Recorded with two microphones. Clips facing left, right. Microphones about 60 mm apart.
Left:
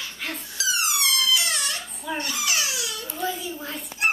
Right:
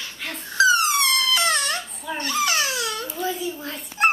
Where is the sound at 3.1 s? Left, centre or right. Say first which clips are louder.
Right 2 dB; centre.